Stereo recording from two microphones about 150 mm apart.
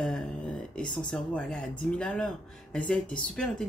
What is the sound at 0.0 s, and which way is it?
Speech, 5° left (ahead or behind).